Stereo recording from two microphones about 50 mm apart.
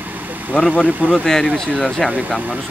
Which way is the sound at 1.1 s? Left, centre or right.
Centre.